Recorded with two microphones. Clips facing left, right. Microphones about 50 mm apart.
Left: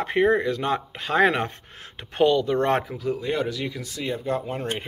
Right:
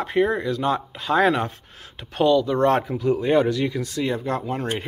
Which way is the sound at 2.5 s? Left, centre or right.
Left.